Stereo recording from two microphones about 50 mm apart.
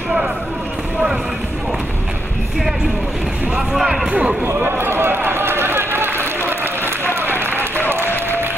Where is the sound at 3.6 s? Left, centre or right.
Centre.